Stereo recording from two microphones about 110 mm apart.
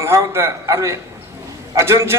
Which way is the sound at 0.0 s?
25° right (ahead or behind).